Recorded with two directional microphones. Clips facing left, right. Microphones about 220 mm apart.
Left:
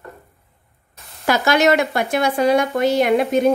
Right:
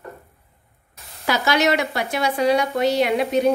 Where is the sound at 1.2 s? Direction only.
50° left (ahead or behind).